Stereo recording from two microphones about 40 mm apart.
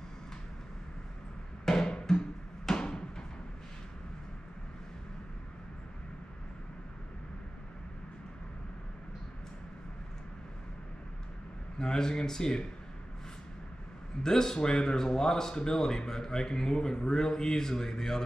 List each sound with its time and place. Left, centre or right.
1.7 s music: centre
11.8 s speech: centre
14.2 s speech: centre